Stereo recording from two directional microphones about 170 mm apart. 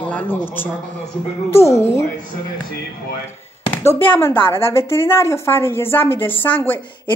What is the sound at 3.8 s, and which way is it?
A woman's voice, 15° left (ahead or behind).